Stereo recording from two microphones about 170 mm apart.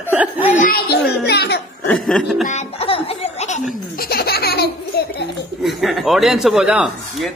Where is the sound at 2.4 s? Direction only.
40° left (ahead or behind).